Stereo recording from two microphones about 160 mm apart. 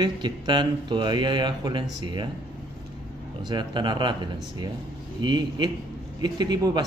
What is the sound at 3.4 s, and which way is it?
Speech, 30° right (ahead or behind).